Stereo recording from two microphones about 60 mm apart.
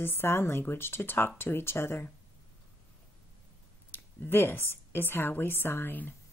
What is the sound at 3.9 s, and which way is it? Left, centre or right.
A woman's voice, left.